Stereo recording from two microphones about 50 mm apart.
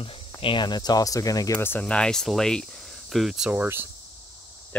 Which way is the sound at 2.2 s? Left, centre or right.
Centre.